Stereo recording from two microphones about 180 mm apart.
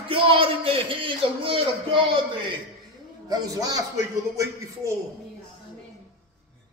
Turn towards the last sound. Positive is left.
turn(degrees=-20)  # may be behind; listen again after turning